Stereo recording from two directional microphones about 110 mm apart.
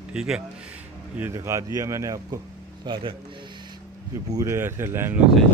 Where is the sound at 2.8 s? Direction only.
45° right (ahead or behind).